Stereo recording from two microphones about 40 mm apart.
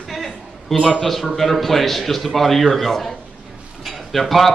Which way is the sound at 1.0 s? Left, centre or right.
Centre.